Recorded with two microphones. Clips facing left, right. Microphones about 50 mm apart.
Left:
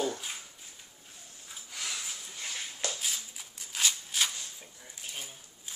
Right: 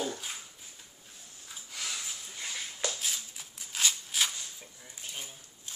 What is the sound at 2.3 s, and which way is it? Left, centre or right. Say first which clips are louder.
Dog: right 1 dB; centre.